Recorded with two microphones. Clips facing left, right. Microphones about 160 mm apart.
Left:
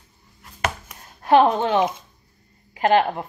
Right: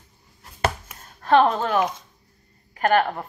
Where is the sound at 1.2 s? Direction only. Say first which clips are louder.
Left 2 dB; 15° left (ahead or behind).